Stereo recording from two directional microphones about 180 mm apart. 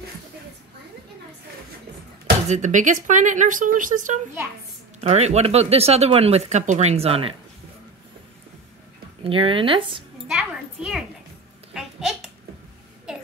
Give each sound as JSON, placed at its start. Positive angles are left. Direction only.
{"t": 2.4, "sound": "speech", "side_deg": -40}
{"t": 9.2, "sound": "speech", "side_deg": -30}
{"t": 10.2, "sound": "a sound", "side_deg": -5}